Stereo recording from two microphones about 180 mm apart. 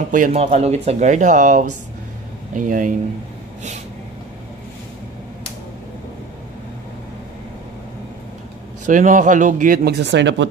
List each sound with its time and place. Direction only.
0.1 s speech: 40° right (ahead or behind)
8.8 s speech: 45° right (ahead or behind); by 10.4 s 75° right (ahead or behind)